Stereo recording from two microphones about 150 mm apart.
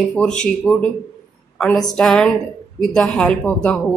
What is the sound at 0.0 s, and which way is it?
Speech, centre (ahead or behind).